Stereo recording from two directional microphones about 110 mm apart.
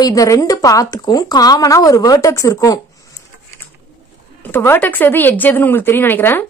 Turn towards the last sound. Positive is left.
turn(degrees=20)  # may be behind; listen again after turning